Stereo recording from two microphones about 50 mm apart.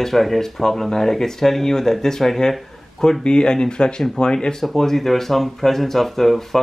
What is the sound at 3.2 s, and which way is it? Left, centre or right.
Speech, centre.